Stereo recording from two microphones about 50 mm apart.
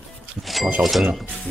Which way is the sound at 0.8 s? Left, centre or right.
Centre.